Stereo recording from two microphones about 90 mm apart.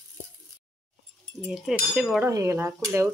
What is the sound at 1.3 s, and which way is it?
Frying, 5° right (ahead or behind).